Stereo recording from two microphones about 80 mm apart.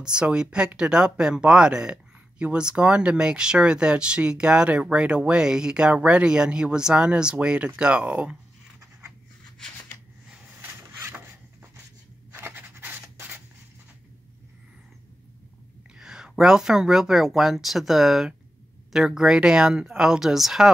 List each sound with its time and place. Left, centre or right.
0.0 s speech: centre
10.6 s vehicle: right
12.4 s writing: right
16.0 s speech: centre